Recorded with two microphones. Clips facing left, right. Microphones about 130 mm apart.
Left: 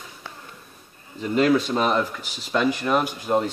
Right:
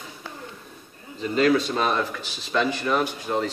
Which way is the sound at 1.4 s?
15° left (ahead or behind).